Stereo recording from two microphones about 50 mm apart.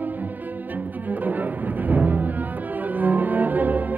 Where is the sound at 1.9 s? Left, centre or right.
Right.